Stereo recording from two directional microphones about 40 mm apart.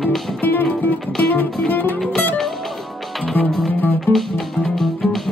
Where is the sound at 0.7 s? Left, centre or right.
Left.